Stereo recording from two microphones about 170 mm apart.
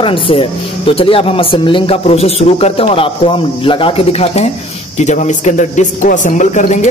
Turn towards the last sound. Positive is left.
turn(degrees=45)  # may be behind; listen again after turning